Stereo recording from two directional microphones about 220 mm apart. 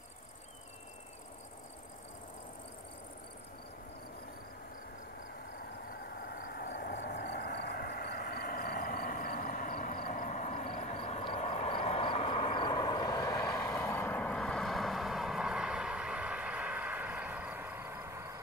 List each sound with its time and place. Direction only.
6.1 s vehicle: 40° left (ahead or behind); by 18.4 s 10° right (ahead or behind)